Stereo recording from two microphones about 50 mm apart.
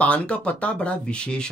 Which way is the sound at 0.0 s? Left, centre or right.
Left.